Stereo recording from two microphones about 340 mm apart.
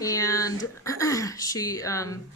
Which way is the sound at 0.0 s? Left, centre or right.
Centre.